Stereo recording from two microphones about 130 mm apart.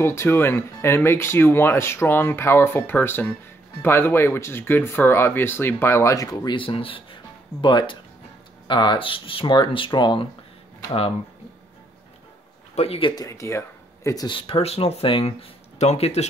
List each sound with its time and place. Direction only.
0.0 s speech: 20° left (ahead or behind); by 10.2 s 35° left (ahead or behind)
10.9 s speech: 50° left (ahead or behind)
12.7 s speech: 50° left (ahead or behind)
13.1 s speech: 25° left (ahead or behind); by 15.3 s 45° left (ahead or behind)
15.8 s speech: 60° left (ahead or behind)